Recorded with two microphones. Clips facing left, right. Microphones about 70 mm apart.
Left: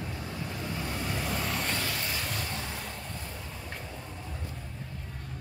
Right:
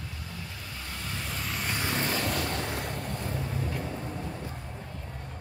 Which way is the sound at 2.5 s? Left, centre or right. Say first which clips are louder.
Right 5 dB; right.